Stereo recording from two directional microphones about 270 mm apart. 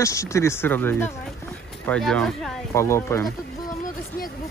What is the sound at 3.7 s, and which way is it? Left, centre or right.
Vehicle, left.